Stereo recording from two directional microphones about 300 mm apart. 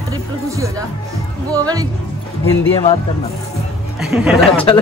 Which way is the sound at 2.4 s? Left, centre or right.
Centre.